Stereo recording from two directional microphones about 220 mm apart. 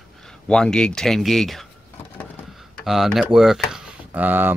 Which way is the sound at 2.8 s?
Centre (ahead or behind).